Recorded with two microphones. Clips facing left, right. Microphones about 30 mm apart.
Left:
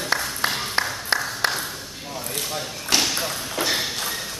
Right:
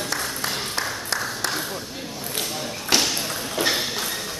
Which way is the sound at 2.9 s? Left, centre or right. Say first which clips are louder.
Even; centre.